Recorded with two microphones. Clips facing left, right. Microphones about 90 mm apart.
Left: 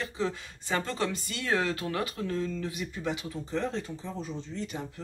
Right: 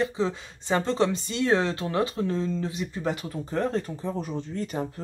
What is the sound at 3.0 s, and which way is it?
Speech, 45° right (ahead or behind).